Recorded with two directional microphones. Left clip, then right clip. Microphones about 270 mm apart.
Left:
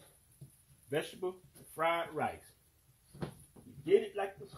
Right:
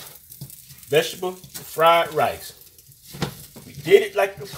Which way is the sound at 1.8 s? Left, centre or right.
Left.